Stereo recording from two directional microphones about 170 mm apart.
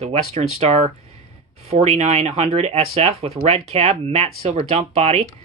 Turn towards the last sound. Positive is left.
turn(degrees=-40)  # may be behind; listen again after turning